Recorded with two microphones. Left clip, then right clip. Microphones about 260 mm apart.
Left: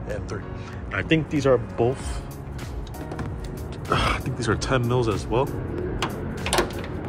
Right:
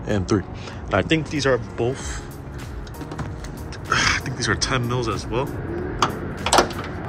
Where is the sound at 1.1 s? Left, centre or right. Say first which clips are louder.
Left 5 dB; centre.